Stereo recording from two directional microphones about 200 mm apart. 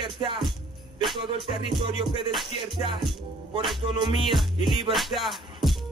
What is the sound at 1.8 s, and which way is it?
Music, 25° right (ahead or behind).